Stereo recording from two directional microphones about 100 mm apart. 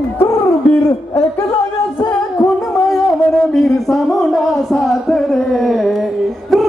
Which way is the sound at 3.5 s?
Centre (ahead or behind).